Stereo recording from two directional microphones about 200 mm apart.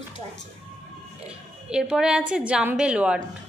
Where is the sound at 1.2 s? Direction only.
5° right (ahead or behind).